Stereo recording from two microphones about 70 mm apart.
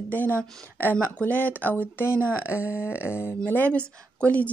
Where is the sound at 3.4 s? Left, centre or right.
Left.